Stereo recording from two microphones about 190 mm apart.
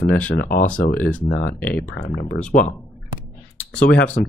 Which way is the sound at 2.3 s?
45° left (ahead or behind).